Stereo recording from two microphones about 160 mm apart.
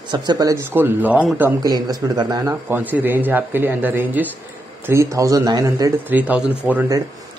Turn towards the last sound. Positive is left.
turn(degrees=-10)  # may be behind; listen again after turning